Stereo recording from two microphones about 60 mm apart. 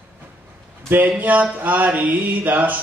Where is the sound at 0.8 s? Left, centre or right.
Right.